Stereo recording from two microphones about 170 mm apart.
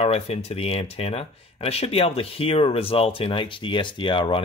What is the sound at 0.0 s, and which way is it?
Speech, 35° left (ahead or behind).